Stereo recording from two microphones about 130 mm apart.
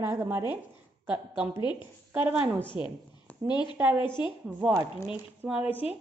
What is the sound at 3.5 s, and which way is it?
Speech, 35° left (ahead or behind).